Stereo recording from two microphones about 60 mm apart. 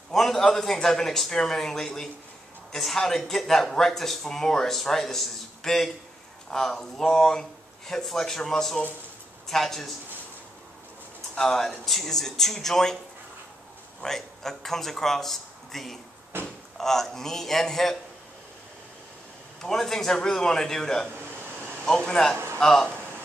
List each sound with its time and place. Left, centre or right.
0.1 s a man's voice: centre
11.3 s a man's voice: centre
14.0 s speech: centre
16.3 s door: right
16.7 s speech: centre
19.6 s a man's voice: centre